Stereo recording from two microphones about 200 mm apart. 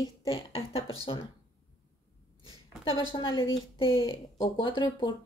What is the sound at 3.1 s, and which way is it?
Speech, 25° left (ahead or behind).